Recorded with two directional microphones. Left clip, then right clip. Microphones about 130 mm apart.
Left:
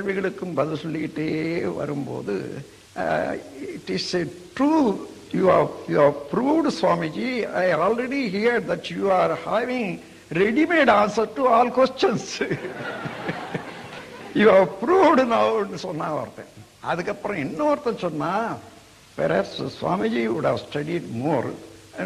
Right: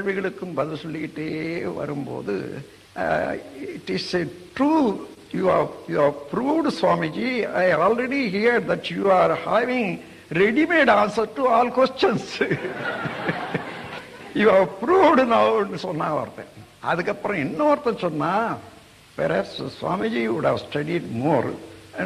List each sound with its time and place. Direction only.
0.0 s a man's voice: 35° right (ahead or behind)